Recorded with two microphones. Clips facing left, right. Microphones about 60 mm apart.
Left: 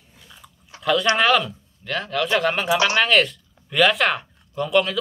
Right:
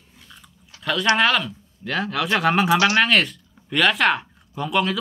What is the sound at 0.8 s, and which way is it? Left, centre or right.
Speech, centre.